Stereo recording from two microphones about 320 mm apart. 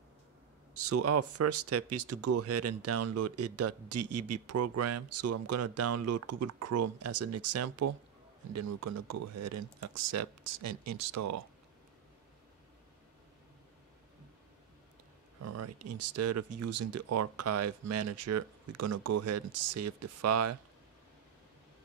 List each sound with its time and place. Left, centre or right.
0.7 s speech: right
15.4 s speech: right